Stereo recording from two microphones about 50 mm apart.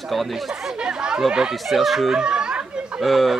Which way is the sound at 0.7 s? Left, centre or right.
Centre.